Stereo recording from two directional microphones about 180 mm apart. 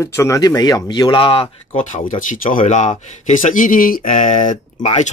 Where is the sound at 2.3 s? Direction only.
50° left (ahead or behind).